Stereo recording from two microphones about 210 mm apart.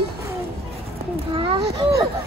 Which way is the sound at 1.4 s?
25° right (ahead or behind).